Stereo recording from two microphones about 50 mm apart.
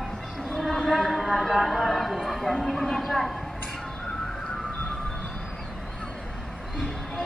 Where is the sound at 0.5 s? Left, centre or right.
Centre.